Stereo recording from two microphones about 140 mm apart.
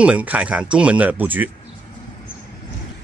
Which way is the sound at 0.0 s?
10° right (ahead or behind).